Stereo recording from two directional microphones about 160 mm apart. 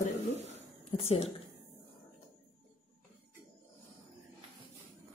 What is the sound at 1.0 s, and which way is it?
Speech, 40° left (ahead or behind).